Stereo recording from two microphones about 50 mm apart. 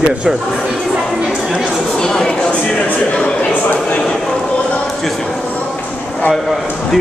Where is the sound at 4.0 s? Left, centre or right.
Centre.